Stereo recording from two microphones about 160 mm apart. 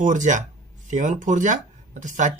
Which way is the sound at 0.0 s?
50° right (ahead or behind).